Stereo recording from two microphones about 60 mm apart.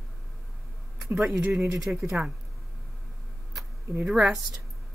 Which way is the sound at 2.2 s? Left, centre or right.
Right.